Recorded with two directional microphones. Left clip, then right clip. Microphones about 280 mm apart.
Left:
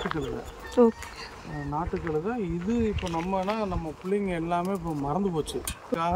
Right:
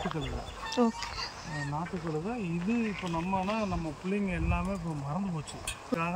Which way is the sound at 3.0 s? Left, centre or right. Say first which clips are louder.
Left 4 dB; centre.